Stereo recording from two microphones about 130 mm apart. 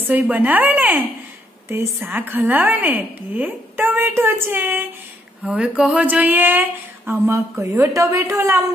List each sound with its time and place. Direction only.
0.0 s a woman's voice: 15° right (ahead or behind)